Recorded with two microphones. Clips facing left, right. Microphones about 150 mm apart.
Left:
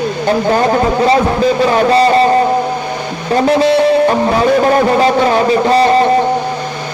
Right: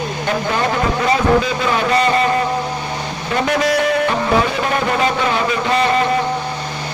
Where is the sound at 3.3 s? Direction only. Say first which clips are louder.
Left 7 dB; 30° left (ahead or behind).